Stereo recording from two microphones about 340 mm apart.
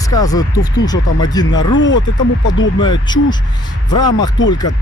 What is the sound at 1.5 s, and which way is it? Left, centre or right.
Speech, left.